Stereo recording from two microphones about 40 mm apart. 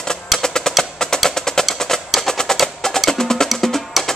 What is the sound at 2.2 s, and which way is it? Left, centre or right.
Percussion, centre.